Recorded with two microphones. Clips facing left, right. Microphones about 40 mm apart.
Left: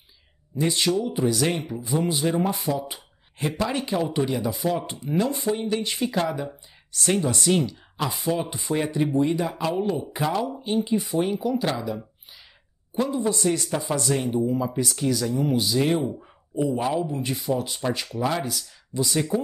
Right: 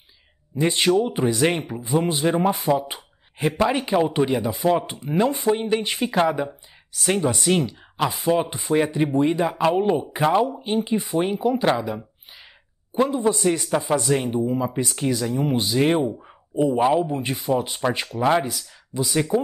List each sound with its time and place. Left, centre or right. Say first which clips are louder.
0.6 s speech: right 4 dB; right
8.5 s speech: right 4 dB; centre
13.0 s speech: right 4 dB; right
18.5 s speech: even; centre
19.1 s speech: right 4 dB; right